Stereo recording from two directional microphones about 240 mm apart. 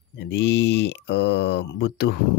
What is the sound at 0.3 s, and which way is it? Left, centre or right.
Speech, left.